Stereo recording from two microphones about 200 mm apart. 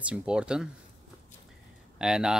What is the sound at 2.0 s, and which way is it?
Speech, 5° right (ahead or behind).